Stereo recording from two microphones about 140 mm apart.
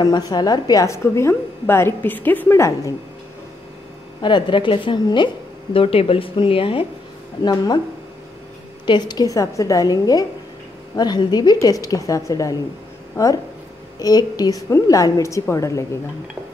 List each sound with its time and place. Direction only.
0.0 s a woman's voice: 30° left (ahead or behind)
4.2 s speech: 35° left (ahead or behind)
7.4 s a woman's voice: 30° left (ahead or behind)
8.8 s a woman's voice: 30° left (ahead or behind)